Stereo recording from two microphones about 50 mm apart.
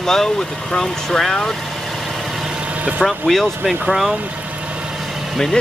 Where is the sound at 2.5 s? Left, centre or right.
Right.